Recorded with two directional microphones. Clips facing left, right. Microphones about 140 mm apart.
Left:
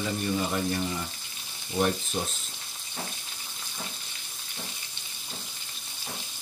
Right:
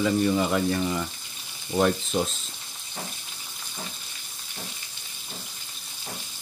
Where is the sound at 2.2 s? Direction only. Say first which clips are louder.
Right 6 dB; 90° right.